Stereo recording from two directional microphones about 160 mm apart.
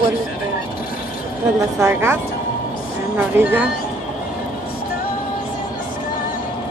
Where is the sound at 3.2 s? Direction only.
10° right (ahead or behind).